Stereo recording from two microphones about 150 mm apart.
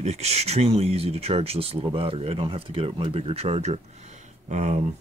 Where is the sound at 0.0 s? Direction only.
45° right (ahead or behind).